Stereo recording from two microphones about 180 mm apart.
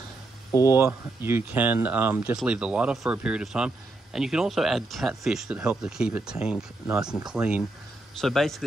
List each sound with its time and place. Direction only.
0.5 s speech: 20° left (ahead or behind)
0.7 s speech: 15° right (ahead or behind)